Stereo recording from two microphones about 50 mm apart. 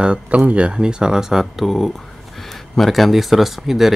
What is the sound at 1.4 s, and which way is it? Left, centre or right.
Speech, centre.